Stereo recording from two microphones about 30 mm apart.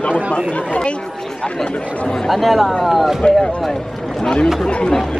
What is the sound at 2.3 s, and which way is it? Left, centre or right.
Speech, centre.